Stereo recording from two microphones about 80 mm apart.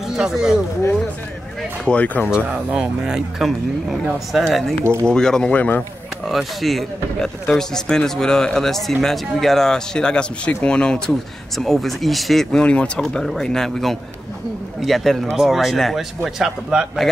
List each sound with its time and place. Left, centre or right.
0.1 s speech: centre
1.9 s speech: centre
2.2 s speech: centre
6.2 s speech: centre